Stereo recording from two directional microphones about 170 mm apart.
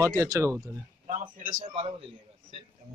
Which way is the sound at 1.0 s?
40° right (ahead or behind).